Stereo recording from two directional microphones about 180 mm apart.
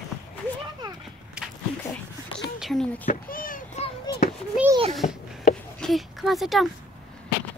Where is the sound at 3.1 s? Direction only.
50° left (ahead or behind).